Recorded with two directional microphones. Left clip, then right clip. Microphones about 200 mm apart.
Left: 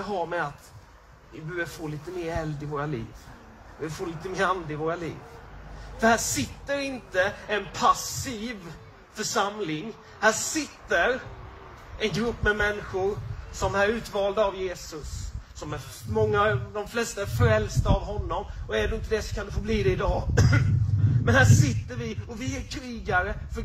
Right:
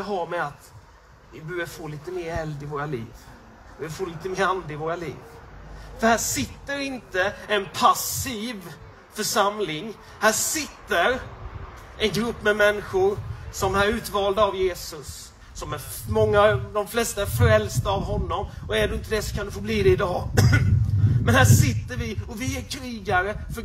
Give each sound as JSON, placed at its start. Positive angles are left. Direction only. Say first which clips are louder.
{"t": 0.0, "sound": "a man's voice", "louder": "right 2 dB", "side_deg": -35}